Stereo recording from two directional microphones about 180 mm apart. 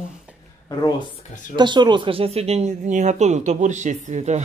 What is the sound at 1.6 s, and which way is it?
Speech, 25° right (ahead or behind).